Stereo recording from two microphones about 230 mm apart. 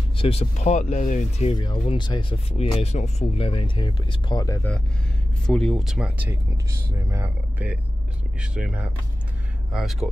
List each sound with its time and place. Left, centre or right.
0.2 s speech: left
1.5 s speech: centre
5.5 s speech: centre